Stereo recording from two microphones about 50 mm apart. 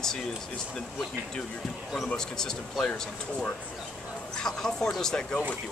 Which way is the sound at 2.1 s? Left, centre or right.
Centre.